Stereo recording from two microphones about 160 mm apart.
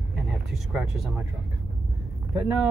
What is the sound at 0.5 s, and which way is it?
Speech, centre (ahead or behind).